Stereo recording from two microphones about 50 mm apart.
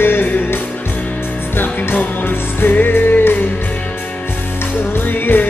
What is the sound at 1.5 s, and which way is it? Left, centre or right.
Music, left.